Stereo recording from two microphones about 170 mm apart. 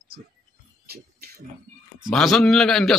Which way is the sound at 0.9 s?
65° right (ahead or behind).